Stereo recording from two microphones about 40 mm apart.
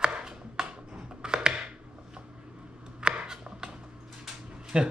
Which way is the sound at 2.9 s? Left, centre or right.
Right.